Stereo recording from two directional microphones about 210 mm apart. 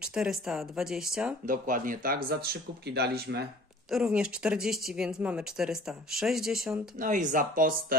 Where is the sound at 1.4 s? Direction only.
40° right (ahead or behind).